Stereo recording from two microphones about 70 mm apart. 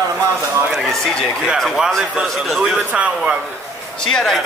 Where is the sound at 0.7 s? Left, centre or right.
Centre.